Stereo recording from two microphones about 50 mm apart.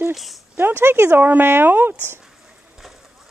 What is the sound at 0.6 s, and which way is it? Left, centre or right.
Speech, right.